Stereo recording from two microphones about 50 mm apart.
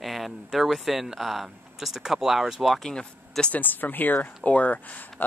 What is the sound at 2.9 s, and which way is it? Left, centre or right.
Speech, centre.